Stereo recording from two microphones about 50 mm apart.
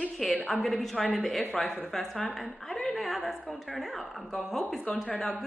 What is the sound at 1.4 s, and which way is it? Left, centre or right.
Speech, left.